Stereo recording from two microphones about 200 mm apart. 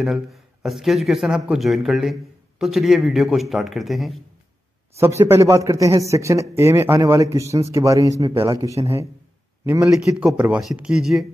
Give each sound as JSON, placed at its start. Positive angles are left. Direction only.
{"t": 0.0, "sound": "speech", "side_deg": 0}
{"t": 4.9, "sound": "a man's voice", "side_deg": -15}